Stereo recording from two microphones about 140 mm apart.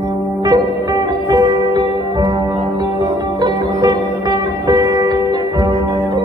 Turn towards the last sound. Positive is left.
turn(degrees=-25)  # may be behind; listen again after turning